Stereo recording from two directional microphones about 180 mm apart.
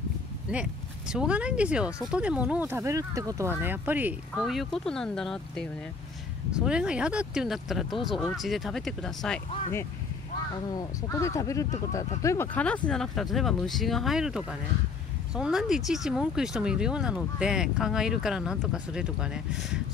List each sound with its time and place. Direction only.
0.5 s speech: 5° right (ahead or behind)
4.4 s speech: centre (ahead or behind)
10.7 s speech: 20° left (ahead or behind); by 19.8 s 5° right (ahead or behind)